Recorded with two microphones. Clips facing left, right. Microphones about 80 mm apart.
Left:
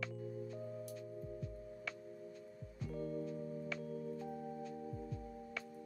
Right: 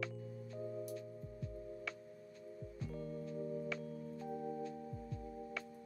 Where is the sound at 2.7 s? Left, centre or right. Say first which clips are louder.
Left 4 dB; centre.